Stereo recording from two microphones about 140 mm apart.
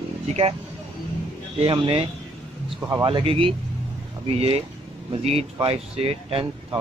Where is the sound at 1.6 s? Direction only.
40° right (ahead or behind).